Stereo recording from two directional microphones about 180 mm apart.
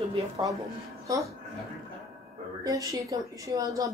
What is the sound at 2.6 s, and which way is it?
A woman's voice, 20° right (ahead or behind).